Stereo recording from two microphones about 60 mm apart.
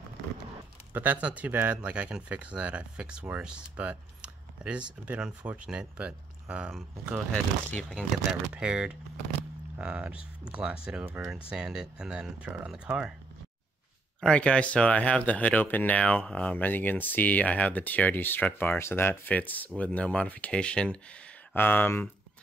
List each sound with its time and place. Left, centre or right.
0.9 s speech: right
7.3 s speech: centre
8.3 s speech: centre
14.2 s speech: centre
16.6 s speech: left
18.8 s speech: left
19.2 s speech: left
21.5 s speech: left